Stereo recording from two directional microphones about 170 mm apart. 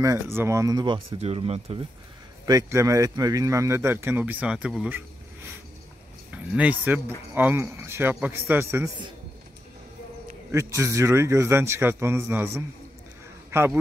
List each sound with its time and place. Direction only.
0.0 s speech: 15° right (ahead or behind); by 1.8 s 35° right (ahead or behind)
2.4 s speech: 20° right (ahead or behind)
6.3 s speech: 10° right (ahead or behind)
10.5 s speech: 15° right (ahead or behind)